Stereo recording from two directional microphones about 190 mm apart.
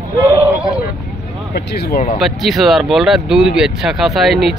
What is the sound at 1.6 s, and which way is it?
Speech, 55° left (ahead or behind).